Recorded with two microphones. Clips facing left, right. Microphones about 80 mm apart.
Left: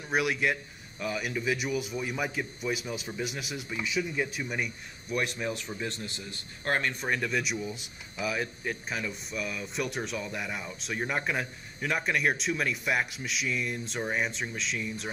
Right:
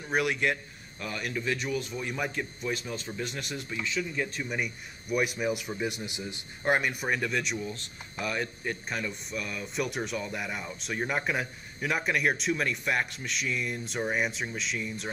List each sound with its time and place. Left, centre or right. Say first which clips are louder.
0.0 s speech: even; centre
5.1 s speech: right 3 dB; centre